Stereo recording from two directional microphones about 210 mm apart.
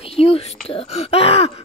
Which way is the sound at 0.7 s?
30° left (ahead or behind).